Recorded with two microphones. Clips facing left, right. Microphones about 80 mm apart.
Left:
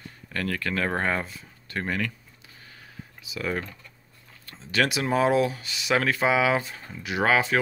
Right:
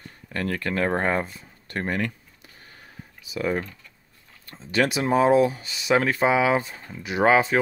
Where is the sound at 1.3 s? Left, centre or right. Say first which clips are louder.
Even; right.